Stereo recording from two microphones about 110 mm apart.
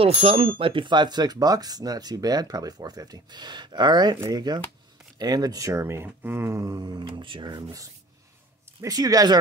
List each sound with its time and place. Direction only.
0.0 s speech: 65° right (ahead or behind); by 7.6 s 45° right (ahead or behind)
8.8 s speech: 35° right (ahead or behind)